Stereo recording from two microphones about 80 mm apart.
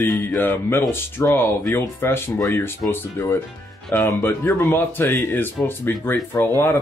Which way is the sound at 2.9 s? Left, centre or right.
Left.